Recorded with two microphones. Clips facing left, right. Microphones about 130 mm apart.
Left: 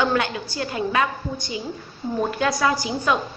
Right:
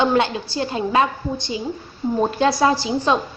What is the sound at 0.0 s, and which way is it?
A woman's voice, 25° right (ahead or behind).